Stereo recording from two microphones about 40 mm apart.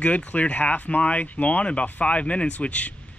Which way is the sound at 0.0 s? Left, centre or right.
Left.